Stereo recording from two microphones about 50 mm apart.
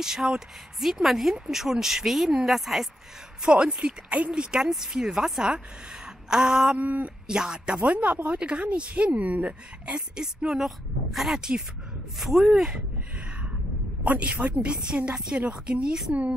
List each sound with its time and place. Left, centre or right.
0.0 s a woman's voice: centre
3.4 s a woman's voice: centre
6.8 s speech: right
7.2 s a woman's voice: centre
7.9 s a woman's voice: right; by 12.7 s centre
14.0 s a woman's voice: right